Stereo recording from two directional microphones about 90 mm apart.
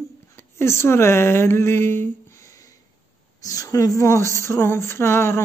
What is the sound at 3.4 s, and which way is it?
Speech, 40° left (ahead or behind).